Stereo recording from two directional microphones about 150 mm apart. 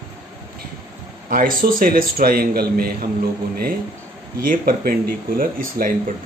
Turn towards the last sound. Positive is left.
turn(degrees=-70)  # may be behind; listen again after turning